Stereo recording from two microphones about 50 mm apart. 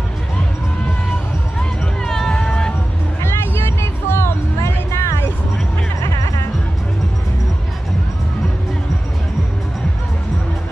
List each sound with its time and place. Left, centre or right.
1.6 s music: centre
3.2 s music: left
6.0 s music: left